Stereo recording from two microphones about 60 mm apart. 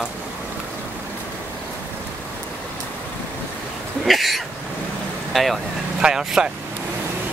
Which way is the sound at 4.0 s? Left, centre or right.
Centre.